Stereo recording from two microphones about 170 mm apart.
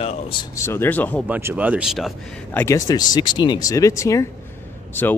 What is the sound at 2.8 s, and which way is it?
Speech, 25° left (ahead or behind).